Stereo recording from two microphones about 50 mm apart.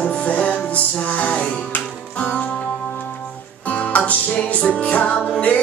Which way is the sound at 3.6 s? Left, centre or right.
Left.